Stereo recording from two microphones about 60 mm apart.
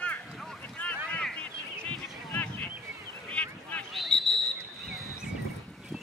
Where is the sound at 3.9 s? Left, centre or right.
Centre.